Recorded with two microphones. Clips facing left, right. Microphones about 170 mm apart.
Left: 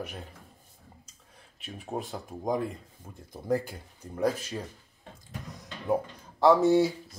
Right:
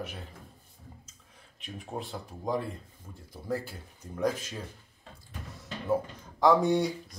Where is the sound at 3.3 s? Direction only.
15° left (ahead or behind).